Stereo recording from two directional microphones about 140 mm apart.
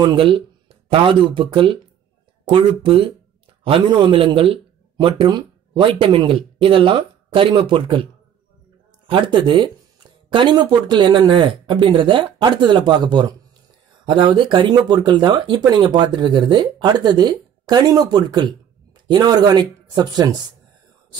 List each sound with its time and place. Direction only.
0.0 s speech: 35° right (ahead or behind)
9.1 s speech: 35° right (ahead or behind)